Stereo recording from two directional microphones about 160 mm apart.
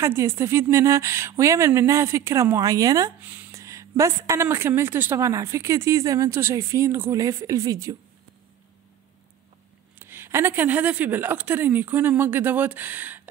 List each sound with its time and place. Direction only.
0.0 s speech: 15° right (ahead or behind)
9.9 s speech: 15° right (ahead or behind)